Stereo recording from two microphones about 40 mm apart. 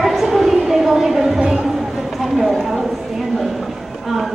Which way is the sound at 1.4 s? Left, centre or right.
Right.